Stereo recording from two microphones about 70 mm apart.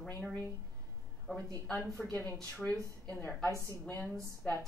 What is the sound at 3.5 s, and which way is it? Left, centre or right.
Speech, right.